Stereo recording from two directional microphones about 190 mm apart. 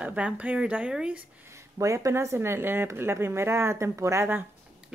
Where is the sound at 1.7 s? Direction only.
15° right (ahead or behind).